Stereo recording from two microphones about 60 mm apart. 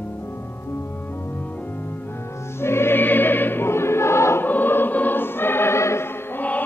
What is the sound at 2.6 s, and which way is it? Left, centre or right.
Music, left.